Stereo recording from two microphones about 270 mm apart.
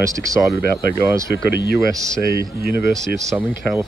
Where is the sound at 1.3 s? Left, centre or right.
Left.